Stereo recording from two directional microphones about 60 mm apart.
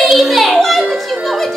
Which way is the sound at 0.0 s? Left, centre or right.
Centre.